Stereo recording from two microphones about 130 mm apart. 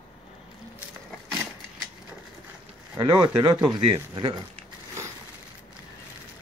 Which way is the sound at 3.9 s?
40° right (ahead or behind).